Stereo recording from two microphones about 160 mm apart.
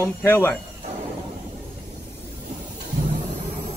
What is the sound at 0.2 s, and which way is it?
Speech, 15° left (ahead or behind).